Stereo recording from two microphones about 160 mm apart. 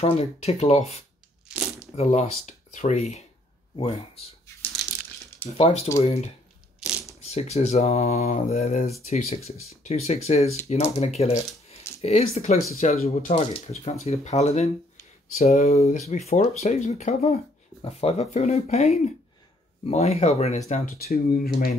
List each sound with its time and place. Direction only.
0.0 s speech: 40° left (ahead or behind)
1.5 s crumpling: 5° right (ahead or behind)
2.0 s speech: 45° left (ahead or behind)
5.6 s speech: 40° left (ahead or behind)
21.0 s speech: 65° left (ahead or behind)